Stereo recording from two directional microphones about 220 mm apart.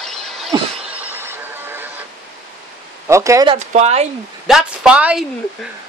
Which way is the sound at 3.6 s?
30° right (ahead or behind).